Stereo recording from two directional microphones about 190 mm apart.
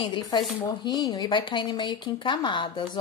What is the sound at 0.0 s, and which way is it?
Speech, 25° left (ahead or behind).